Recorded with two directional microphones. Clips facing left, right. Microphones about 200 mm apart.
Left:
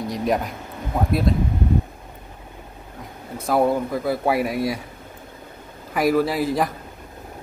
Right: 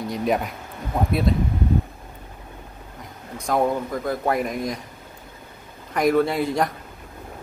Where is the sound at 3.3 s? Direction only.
5° left (ahead or behind).